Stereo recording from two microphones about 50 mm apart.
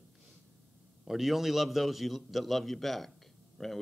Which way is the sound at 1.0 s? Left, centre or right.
Centre.